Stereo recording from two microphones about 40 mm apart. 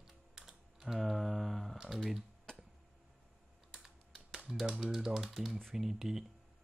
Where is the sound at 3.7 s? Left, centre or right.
Centre.